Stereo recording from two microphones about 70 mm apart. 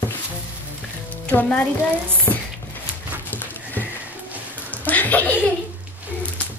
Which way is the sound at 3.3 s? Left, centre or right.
Left.